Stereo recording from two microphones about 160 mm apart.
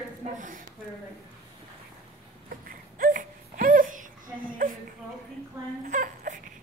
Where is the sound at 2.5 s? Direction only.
60° right (ahead or behind).